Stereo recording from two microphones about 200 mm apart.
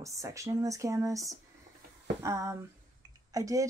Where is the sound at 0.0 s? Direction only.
15° right (ahead or behind).